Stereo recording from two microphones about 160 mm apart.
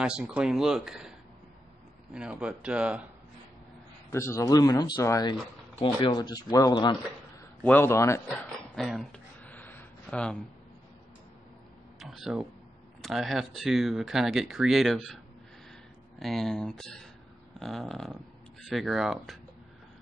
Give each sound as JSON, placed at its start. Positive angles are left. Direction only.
{"t": 0.0, "sound": "speech", "side_deg": -5}
{"t": 2.1, "sound": "speech", "side_deg": -5}
{"t": 4.1, "sound": "speech", "side_deg": 15}
{"t": 7.6, "sound": "speech", "side_deg": 15}
{"t": 8.7, "sound": "a sound", "side_deg": 0}
{"t": 12.0, "sound": "speech", "side_deg": 0}
{"t": 16.2, "sound": "speech", "side_deg": 0}